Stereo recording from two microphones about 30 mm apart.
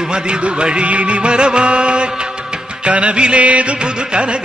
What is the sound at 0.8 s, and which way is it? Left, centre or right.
Music, right.